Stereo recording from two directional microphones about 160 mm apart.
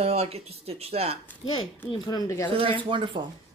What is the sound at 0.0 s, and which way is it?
Speech, 40° right (ahead or behind).